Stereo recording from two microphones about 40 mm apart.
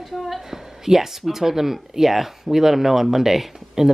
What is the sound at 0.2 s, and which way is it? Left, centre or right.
A woman's voice, centre.